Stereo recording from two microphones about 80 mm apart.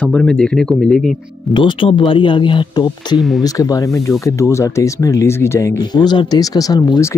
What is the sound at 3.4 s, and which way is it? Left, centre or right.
Speech, left.